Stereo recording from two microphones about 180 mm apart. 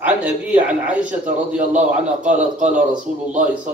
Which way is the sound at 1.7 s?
45° right (ahead or behind).